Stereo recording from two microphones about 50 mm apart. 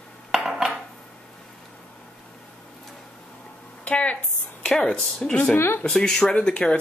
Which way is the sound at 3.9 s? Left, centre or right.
Left.